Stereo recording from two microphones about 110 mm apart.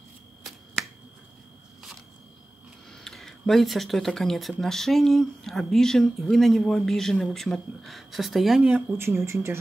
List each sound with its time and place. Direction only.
2.9 s speech: 5° left (ahead or behind)
8.9 s speech: 25° right (ahead or behind)